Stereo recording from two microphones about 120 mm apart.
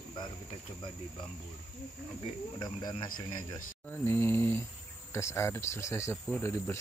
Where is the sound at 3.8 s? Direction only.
15° left (ahead or behind).